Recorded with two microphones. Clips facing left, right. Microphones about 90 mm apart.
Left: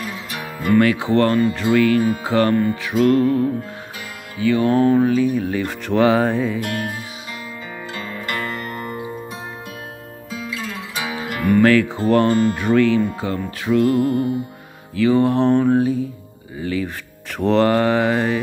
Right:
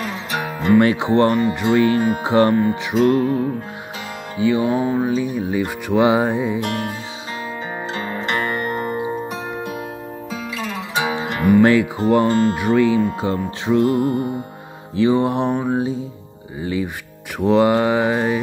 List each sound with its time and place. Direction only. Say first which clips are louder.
0.0 s music: right 5 dB; 55° right (ahead or behind)
0.6 s speech: right 1 dB; 25° right (ahead or behind)
7.9 s zither: right 4 dB; 30° right (ahead or behind)
11.1 s music: right 3 dB; 25° right (ahead or behind)
11.4 s speech: right 1 dB; 15° right (ahead or behind)
17.4 s speech: right 1 dB; 10° right (ahead or behind)